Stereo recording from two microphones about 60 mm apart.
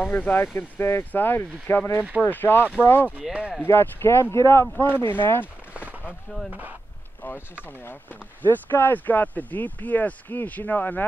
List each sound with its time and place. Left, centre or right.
0.1 s speech: left
3.2 s speech: centre
3.6 s speech: left
4.8 s speech: left
5.7 s a sound: right
7.8 s speech: left